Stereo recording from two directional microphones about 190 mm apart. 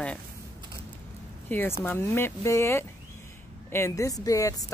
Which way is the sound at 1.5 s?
10° left (ahead or behind).